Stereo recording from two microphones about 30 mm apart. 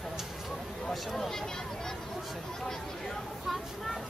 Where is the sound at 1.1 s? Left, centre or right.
Centre.